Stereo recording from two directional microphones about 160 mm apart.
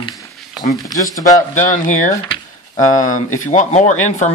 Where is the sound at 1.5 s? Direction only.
55° left (ahead or behind).